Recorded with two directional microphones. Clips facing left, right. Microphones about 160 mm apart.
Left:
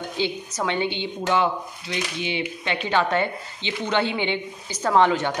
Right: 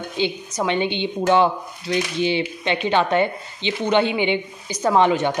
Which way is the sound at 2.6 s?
20° right (ahead or behind).